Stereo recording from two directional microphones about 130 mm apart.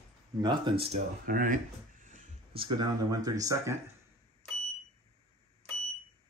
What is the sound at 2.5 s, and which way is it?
Speech, 35° right (ahead or behind).